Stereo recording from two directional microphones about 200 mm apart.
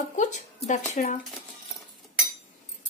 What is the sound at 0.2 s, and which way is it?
Speech, 35° left (ahead or behind).